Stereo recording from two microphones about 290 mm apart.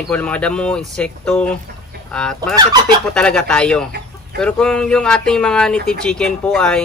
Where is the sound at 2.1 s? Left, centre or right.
Centre.